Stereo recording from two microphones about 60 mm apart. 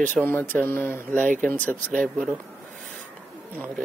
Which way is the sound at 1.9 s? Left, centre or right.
Centre.